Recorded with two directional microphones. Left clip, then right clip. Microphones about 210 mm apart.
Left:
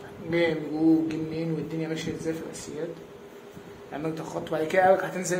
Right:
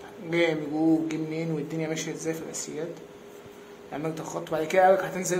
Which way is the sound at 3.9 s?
10° right (ahead or behind).